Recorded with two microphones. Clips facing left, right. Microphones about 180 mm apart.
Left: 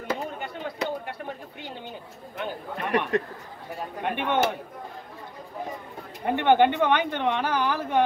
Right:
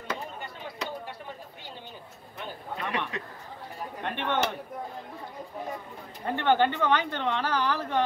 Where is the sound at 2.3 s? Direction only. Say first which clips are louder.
Left 5 dB; 55° left (ahead or behind).